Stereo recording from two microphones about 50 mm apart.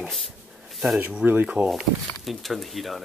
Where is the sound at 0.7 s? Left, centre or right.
Centre.